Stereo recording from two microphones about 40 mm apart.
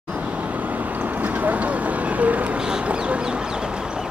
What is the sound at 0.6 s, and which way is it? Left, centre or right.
Vehicle, right.